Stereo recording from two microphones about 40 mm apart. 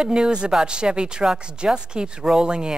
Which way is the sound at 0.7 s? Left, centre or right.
Right.